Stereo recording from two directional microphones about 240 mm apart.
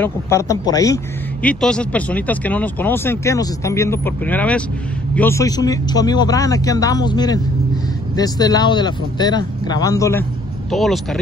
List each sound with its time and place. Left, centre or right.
0.0 s speech: centre
10.7 s speech: centre